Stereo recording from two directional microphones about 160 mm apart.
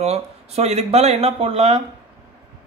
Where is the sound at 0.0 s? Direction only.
40° right (ahead or behind).